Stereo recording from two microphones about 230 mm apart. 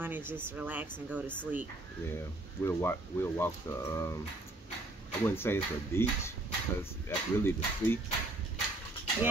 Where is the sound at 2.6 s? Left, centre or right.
Centre.